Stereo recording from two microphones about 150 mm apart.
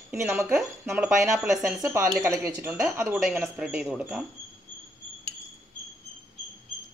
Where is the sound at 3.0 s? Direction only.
5° right (ahead or behind).